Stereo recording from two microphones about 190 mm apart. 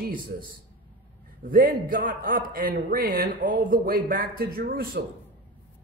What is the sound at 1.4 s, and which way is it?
A man's voice, 45° right (ahead or behind).